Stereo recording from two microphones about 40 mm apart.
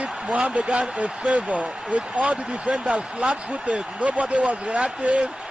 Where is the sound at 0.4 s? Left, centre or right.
Centre.